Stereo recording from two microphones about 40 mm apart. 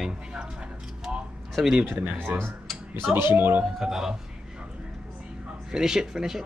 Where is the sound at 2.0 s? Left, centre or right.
Right.